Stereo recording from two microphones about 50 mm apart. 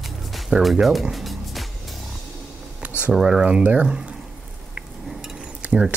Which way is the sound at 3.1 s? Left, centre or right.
Centre.